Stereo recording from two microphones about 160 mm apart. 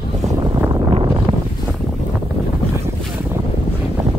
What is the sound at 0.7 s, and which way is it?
Wind noise, 30° right (ahead or behind).